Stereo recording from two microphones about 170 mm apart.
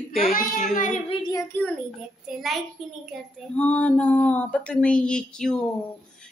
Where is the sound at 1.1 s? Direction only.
25° left (ahead or behind).